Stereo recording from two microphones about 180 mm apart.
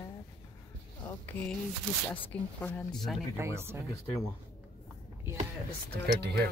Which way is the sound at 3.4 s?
15° right (ahead or behind).